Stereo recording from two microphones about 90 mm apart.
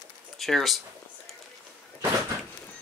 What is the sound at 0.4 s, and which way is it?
Speech, centre (ahead or behind).